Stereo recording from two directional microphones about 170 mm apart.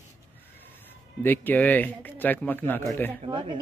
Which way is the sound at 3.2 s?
30° right (ahead or behind).